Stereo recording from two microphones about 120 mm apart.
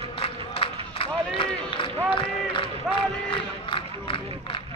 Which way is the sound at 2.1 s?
45° left (ahead or behind).